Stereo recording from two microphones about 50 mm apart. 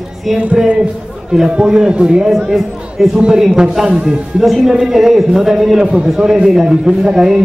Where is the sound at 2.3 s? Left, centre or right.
Centre; by 4.1 s right.